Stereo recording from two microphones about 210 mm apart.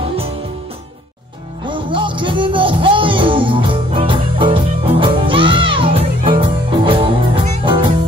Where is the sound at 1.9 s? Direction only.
25° right (ahead or behind).